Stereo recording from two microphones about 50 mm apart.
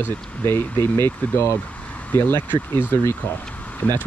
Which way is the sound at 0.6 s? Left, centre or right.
Left.